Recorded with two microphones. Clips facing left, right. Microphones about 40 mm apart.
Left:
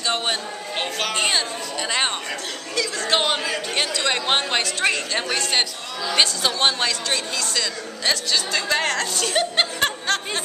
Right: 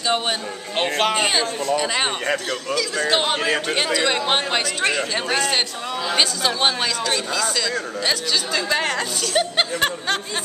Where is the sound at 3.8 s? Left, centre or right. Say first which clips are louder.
Right 3 dB; centre.